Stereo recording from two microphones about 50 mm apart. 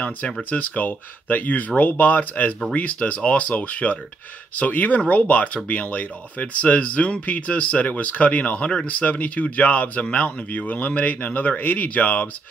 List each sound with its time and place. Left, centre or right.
0.4 s speech: left